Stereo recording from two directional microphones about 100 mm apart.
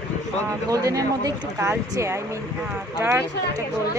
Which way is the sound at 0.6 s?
35° right (ahead or behind).